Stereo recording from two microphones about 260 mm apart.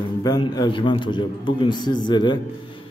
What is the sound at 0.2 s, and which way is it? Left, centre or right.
A man's voice, centre.